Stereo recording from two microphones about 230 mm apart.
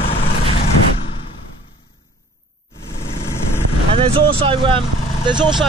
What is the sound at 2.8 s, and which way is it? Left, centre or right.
Vehicle, centre.